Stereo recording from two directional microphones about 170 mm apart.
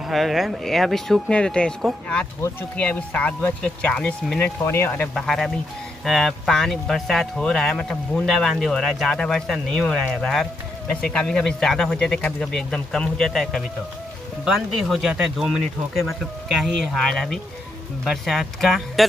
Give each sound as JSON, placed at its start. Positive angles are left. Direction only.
{"t": 0.0, "sound": "speech", "side_deg": 0}